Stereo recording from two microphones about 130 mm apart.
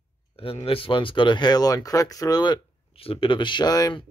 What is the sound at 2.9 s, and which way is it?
Speech, 45° left (ahead or behind).